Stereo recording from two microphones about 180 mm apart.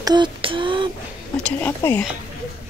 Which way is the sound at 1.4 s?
10° left (ahead or behind).